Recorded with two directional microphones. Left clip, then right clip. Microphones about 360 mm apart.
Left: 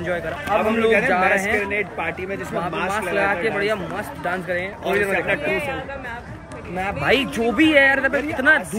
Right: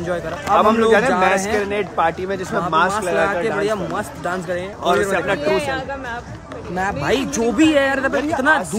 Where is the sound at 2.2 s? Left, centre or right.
Centre.